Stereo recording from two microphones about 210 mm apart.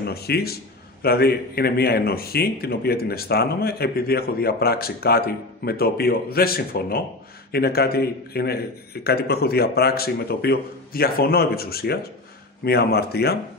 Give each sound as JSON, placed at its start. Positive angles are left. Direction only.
{"t": 0.0, "sound": "a man's voice", "side_deg": 50}